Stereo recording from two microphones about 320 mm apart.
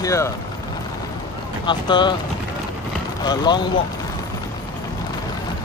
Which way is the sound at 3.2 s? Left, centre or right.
Centre.